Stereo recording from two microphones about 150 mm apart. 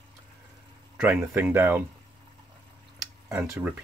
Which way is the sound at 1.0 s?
10° right (ahead or behind).